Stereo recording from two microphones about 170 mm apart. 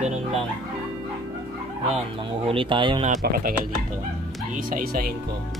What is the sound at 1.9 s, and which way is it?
Speech, 30° right (ahead or behind).